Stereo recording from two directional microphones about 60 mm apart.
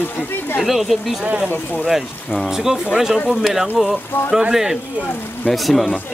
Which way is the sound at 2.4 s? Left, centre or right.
Centre.